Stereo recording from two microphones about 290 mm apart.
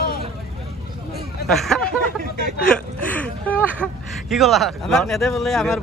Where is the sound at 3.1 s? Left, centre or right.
Centre.